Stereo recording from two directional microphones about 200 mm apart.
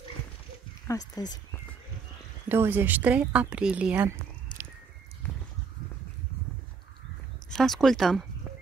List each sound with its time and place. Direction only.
0.8 s speech: 20° left (ahead or behind)
2.4 s a woman's voice: 10° right (ahead or behind)
7.5 s speech: centre (ahead or behind)